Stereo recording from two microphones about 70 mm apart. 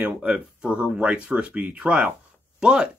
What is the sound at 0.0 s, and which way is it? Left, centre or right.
Speech, centre.